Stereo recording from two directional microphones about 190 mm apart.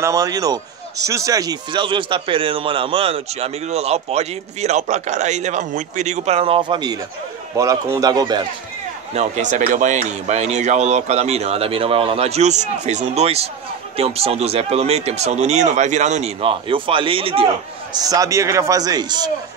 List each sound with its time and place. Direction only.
0.0 s a man's voice: 15° right (ahead or behind)
9.1 s speech: 40° right (ahead or behind)
17.9 s a man's voice: 20° right (ahead or behind)